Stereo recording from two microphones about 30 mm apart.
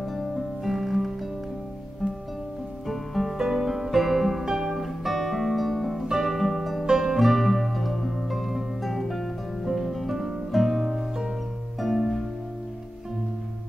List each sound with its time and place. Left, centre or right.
0.1 s music: centre
2.9 s music: centre
3.3 s music: centre
5.9 s music: centre
6.2 s music: centre
6.9 s music: centre
7.2 s music: centre
9.7 s music: centre
11.8 s harp: centre